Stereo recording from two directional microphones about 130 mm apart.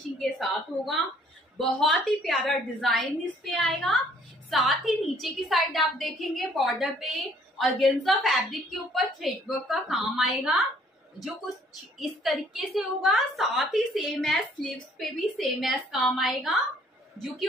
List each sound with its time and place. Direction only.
0.2 s a woman's voice: centre (ahead or behind)
12.0 s a woman's voice: centre (ahead or behind)